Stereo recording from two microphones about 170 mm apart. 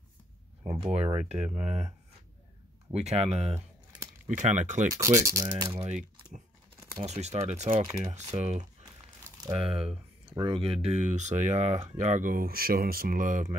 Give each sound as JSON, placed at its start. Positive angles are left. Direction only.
{"t": 0.9, "sound": "speech", "side_deg": -40}
{"t": 2.9, "sound": "speech", "side_deg": -40}
{"t": 3.5, "sound": "typing", "side_deg": -15}
{"t": 4.4, "sound": "speech", "side_deg": -45}
{"t": 4.9, "sound": "speech", "side_deg": -20}
{"t": 5.9, "sound": "speech", "side_deg": -45}
{"t": 9.2, "sound": "crumpling", "side_deg": -20}
{"t": 9.6, "sound": "speech", "side_deg": -35}